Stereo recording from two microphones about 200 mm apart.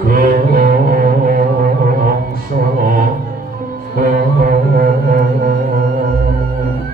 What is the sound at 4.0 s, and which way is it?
Music, 50° right (ahead or behind).